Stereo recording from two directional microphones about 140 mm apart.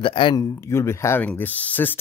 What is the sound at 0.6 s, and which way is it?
Speech, 20° left (ahead or behind).